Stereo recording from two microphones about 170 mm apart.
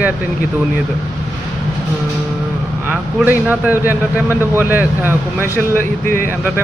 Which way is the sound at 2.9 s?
10° right (ahead or behind).